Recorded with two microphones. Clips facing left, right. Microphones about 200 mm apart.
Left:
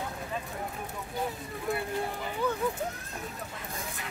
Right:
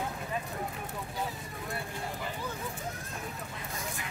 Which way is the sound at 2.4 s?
60° left (ahead or behind).